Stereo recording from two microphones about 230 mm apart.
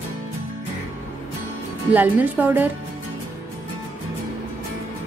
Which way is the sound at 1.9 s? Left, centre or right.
Centre.